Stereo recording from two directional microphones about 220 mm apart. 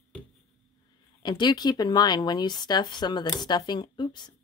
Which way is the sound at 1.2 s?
20° left (ahead or behind).